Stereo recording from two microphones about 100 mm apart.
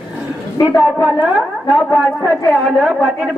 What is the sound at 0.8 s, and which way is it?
Speech, 15° right (ahead or behind).